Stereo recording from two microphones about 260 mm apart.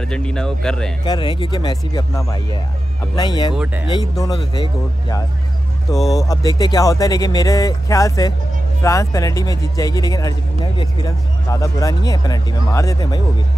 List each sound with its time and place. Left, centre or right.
0.1 s speech: centre
1.0 s speech: centre
3.5 s speech: centre
3.9 s speech: centre
6.1 s speech: centre